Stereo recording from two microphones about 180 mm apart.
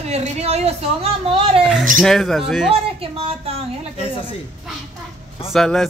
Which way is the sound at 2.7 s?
30° right (ahead or behind).